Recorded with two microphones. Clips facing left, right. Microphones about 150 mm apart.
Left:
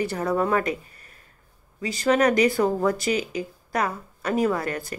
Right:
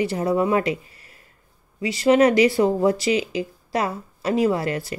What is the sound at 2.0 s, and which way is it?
A woman's voice, 25° right (ahead or behind).